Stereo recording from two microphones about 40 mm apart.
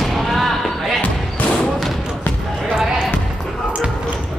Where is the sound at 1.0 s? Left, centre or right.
Left.